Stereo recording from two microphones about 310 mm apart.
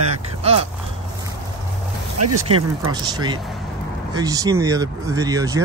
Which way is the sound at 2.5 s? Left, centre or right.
Centre.